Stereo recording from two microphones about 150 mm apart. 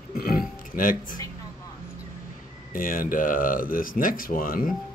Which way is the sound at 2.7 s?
70° left (ahead or behind).